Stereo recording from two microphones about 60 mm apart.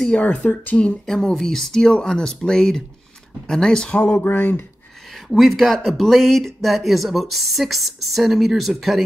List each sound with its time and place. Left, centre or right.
0.0 s speech: left
1.1 s speech: centre
4.2 s speech: left
5.1 s speech: centre